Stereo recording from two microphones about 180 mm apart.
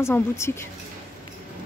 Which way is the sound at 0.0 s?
15° left (ahead or behind).